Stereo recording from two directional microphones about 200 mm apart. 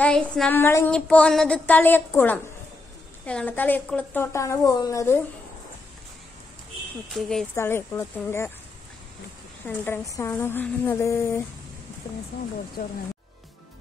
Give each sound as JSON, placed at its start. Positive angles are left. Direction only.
{"t": 0.0, "sound": "child singing", "side_deg": 5}
{"t": 7.2, "sound": "speech", "side_deg": 0}
{"t": 7.5, "sound": "child singing", "side_deg": 10}
{"t": 9.7, "sound": "child singing", "side_deg": 10}